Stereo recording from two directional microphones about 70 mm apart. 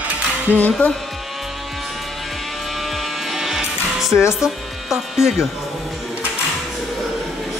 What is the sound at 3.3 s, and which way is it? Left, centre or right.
Music, centre.